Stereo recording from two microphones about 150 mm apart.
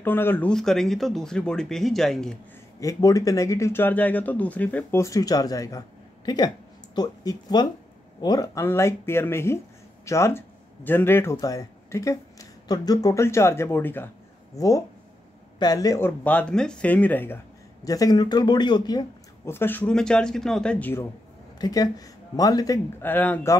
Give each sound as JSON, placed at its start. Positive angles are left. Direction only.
{"t": 0.0, "sound": "speech", "side_deg": 15}
{"t": 2.8, "sound": "speech", "side_deg": 25}
{"t": 16.3, "sound": "speech", "side_deg": 10}
{"t": 17.8, "sound": "speech", "side_deg": 25}
{"t": 19.5, "sound": "speech", "side_deg": 15}
{"t": 21.5, "sound": "speech", "side_deg": 25}
{"t": 23.0, "sound": "speech", "side_deg": 10}